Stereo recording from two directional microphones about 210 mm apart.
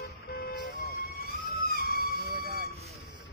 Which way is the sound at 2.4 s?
50° right (ahead or behind).